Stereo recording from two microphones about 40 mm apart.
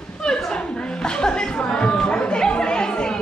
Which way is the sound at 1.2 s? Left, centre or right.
Left.